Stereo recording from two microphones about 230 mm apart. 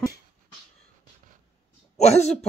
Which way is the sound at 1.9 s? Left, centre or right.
Left.